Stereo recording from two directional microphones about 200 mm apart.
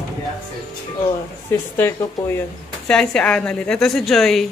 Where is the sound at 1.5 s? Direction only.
10° left (ahead or behind).